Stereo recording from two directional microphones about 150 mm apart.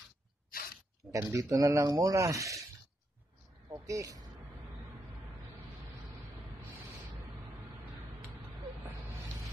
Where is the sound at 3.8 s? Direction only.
20° right (ahead or behind).